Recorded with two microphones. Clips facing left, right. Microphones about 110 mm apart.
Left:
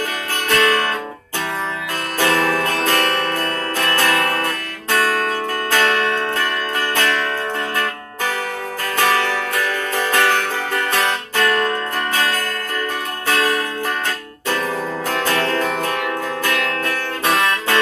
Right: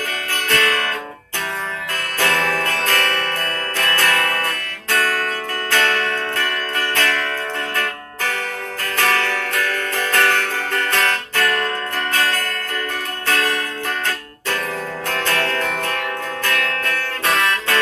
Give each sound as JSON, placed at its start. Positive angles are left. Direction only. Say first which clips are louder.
{"t": 0.5, "sound": "music", "louder": "left 4 dB", "side_deg": 15}
{"t": 2.1, "sound": "music", "louder": "left 3 dB", "side_deg": 15}
{"t": 8.9, "sound": "music", "louder": "left 2 dB", "side_deg": 15}
{"t": 15.0, "sound": "music", "louder": "left 2 dB", "side_deg": 20}